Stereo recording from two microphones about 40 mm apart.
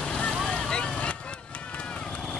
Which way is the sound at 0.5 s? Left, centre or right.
Left.